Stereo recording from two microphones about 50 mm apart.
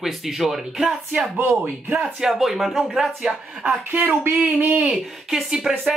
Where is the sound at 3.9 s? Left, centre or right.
Right.